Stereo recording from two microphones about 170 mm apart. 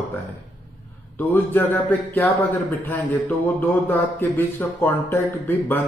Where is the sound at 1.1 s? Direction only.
10° left (ahead or behind).